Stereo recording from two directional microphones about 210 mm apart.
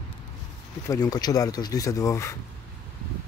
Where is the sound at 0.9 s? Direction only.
20° left (ahead or behind).